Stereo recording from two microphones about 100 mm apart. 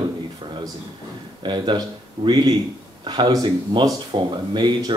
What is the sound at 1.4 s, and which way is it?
Speech, 50° right (ahead or behind).